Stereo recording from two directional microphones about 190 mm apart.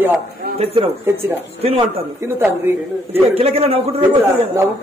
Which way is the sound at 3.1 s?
30° right (ahead or behind).